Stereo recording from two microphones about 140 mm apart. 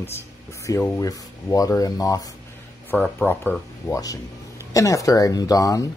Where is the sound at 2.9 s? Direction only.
10° left (ahead or behind); by 5.9 s 25° left (ahead or behind).